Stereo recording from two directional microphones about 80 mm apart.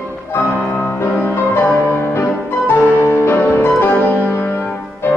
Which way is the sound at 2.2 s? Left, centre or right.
Left.